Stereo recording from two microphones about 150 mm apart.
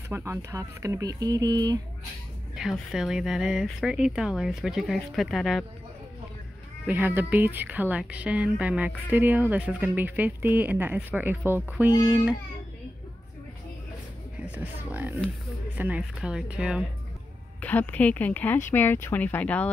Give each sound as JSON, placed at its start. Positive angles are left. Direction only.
{"t": 0.1, "sound": "speech", "side_deg": -15}
{"t": 2.5, "sound": "speech", "side_deg": -5}
{"t": 6.9, "sound": "speech", "side_deg": -15}
{"t": 14.5, "sound": "speech", "side_deg": -10}
{"t": 17.6, "sound": "speech", "side_deg": 10}